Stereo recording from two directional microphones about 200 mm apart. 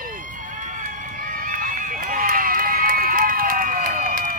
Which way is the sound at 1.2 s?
40° right (ahead or behind).